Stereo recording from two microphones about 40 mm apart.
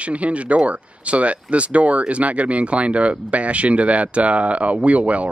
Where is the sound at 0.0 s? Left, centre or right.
Right.